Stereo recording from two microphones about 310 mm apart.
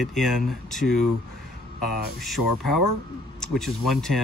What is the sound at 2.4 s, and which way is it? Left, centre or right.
Speech, left.